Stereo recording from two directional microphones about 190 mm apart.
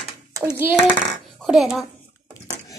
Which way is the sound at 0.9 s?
Centre (ahead or behind).